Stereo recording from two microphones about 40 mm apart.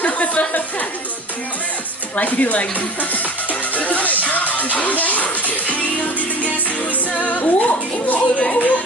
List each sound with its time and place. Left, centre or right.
0.0 s a sound: left
2.1 s speech: left
3.7 s music: left
6.4 s speech: left